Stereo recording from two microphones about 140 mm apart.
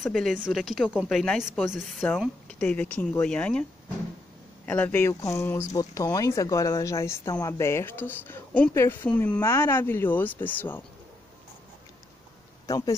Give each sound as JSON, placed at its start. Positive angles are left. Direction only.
{"t": 0.0, "sound": "a woman's voice", "side_deg": 5}
{"t": 2.4, "sound": "speech", "side_deg": 10}
{"t": 4.6, "sound": "speech", "side_deg": 10}
{"t": 12.6, "sound": "speech", "side_deg": 25}